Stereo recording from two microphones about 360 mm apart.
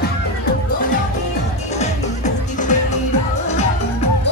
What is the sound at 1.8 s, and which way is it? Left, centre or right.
Music, centre.